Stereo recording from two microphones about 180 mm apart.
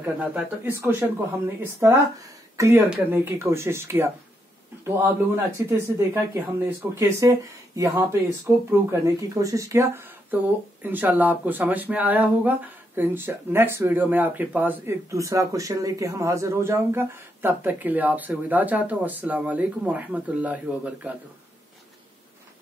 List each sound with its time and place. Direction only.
0.0 s speech: 10° right (ahead or behind)